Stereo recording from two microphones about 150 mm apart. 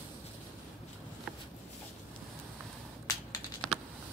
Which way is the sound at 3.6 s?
Centre (ahead or behind).